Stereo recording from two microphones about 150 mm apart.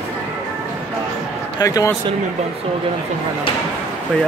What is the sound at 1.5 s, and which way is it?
Speech, 25° left (ahead or behind).